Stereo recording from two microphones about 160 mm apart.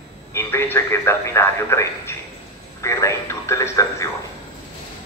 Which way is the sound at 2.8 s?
20° left (ahead or behind).